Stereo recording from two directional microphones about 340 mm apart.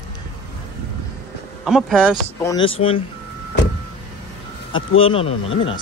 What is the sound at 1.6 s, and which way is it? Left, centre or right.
Speech, centre.